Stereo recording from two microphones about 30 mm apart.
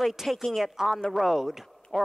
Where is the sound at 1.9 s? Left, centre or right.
Left.